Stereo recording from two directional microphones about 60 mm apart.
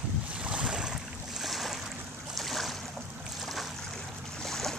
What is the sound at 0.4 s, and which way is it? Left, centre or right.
Waves, centre.